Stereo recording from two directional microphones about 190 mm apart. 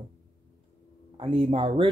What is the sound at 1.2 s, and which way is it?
Speech, 30° right (ahead or behind).